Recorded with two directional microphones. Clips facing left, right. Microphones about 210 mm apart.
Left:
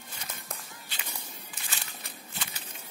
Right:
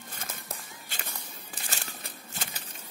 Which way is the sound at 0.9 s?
45° right (ahead or behind).